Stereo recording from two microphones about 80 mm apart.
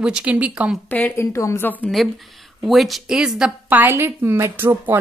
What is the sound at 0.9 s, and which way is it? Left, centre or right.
Speech, left.